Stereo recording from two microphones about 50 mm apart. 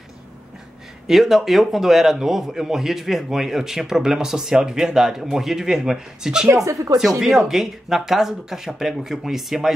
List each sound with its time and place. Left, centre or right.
1.0 s a man's voice: centre
6.5 s speech: right
7.0 s a man's voice: centre